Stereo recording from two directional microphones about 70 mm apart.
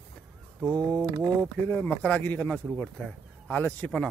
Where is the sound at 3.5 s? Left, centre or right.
Left.